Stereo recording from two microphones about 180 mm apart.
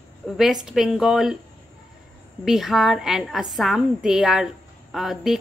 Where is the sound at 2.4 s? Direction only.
Centre (ahead or behind).